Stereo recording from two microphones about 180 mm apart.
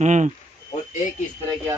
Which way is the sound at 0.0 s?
40° right (ahead or behind).